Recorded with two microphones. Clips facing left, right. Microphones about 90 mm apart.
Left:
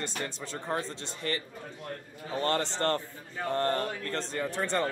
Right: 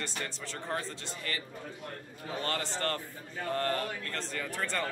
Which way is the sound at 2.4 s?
30° left (ahead or behind).